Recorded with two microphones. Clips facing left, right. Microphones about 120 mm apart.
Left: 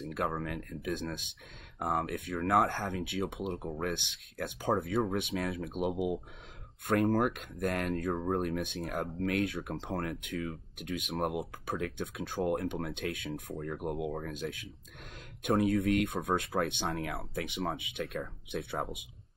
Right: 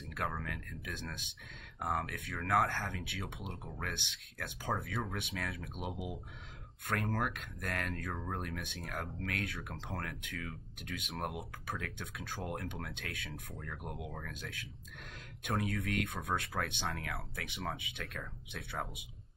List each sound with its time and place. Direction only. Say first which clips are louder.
0.1 s speech: left 4 dB; 25° left (ahead or behind)